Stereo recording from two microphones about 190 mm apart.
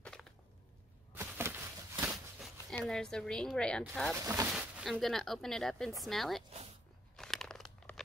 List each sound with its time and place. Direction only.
0.0 s a sound: 5° left (ahead or behind)
1.1 s a sound: 10° right (ahead or behind)
2.4 s speech: centre (ahead or behind)
4.2 s speech: 15° right (ahead or behind)
4.5 s speech: 5° right (ahead or behind)
7.2 s crunch: centre (ahead or behind)